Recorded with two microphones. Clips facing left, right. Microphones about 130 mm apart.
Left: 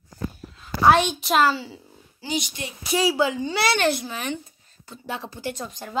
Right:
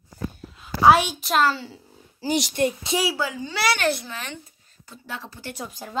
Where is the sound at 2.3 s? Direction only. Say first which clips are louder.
Right 3 dB; 75° right (ahead or behind).